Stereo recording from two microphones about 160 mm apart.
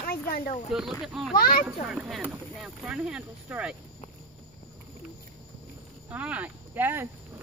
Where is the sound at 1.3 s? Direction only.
65° left (ahead or behind).